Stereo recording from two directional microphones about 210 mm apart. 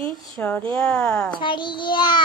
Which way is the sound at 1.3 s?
20° left (ahead or behind).